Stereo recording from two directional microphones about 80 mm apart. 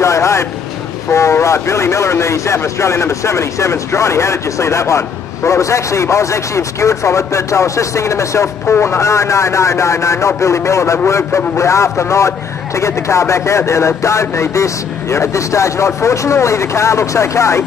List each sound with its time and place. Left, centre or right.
0.0 s vehicle: left
1.1 s speech: left